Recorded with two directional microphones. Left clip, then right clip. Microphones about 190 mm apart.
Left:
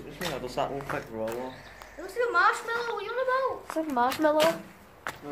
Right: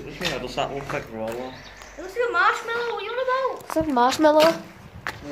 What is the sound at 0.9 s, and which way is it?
Speech, 50° left (ahead or behind).